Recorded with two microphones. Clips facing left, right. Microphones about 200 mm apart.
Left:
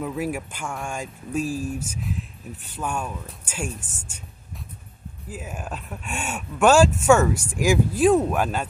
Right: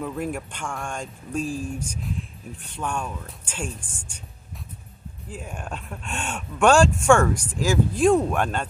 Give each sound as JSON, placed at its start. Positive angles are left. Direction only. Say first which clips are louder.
{"t": 0.0, "sound": "speech", "louder": "left 1 dB", "side_deg": 5}
{"t": 5.3, "sound": "speech", "louder": "left 1 dB", "side_deg": 5}